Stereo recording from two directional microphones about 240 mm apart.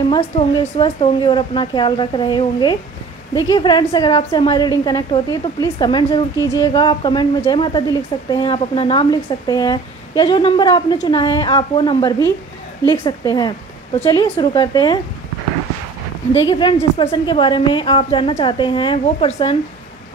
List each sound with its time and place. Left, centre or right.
0.1 s a woman's voice: centre
16.4 s a woman's voice: centre